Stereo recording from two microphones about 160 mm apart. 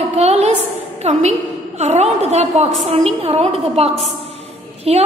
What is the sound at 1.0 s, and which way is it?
A woman's voice, 45° right (ahead or behind).